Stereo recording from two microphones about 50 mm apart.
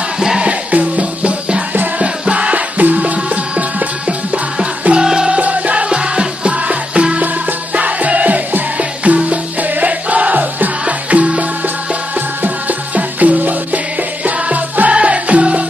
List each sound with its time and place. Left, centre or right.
0.4 s music: right
5.0 s music: centre
5.4 s music: right
12.4 s music: right